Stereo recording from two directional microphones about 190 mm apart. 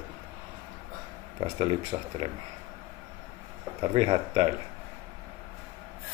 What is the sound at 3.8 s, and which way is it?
Speech, 30° right (ahead or behind).